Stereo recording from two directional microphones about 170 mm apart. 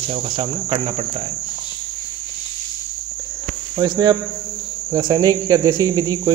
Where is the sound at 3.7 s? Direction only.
25° right (ahead or behind).